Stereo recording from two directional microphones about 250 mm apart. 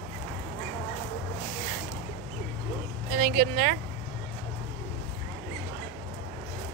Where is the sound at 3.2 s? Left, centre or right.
Right.